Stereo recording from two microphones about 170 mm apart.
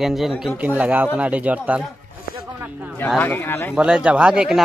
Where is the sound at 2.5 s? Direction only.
10° right (ahead or behind).